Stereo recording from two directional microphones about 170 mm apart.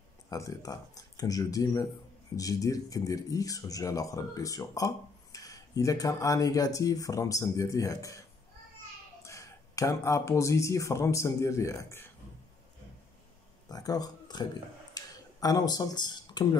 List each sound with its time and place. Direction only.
0.3 s speech: 20° left (ahead or behind)
9.2 s speech: 15° left (ahead or behind)
13.7 s speech: 20° left (ahead or behind)
15.0 s a sound: 20° left (ahead or behind)